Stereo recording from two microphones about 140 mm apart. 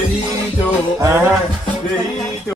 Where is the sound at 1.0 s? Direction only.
15° right (ahead or behind).